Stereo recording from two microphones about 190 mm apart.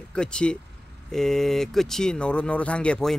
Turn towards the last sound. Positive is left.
turn(degrees=5)  # may be behind; listen again after turning